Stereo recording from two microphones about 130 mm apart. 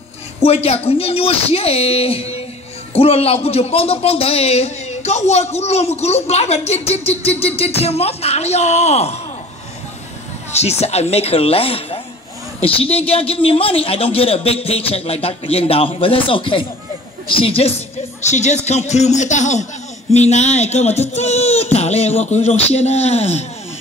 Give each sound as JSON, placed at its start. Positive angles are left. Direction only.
{"t": 0.4, "sound": "speech", "side_deg": 50}
{"t": 10.5, "sound": "speech", "side_deg": 55}